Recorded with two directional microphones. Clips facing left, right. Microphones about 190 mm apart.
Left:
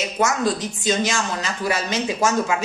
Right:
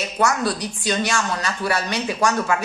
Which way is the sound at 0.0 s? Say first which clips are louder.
Even; 20° left (ahead or behind).